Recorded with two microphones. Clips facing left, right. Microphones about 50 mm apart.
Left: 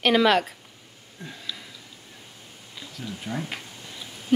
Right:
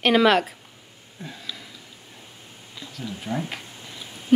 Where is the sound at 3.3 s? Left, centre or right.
Centre.